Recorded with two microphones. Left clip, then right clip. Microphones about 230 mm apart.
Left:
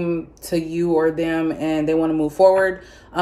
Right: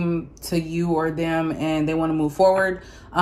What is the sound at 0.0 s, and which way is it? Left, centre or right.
Speech, centre.